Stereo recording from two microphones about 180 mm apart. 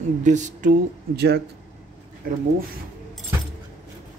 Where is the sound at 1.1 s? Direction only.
65° right (ahead or behind).